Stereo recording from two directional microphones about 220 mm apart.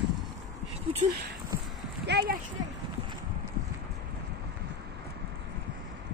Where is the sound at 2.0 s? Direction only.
50° right (ahead or behind).